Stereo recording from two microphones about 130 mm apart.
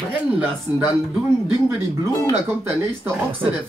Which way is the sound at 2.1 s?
25° left (ahead or behind).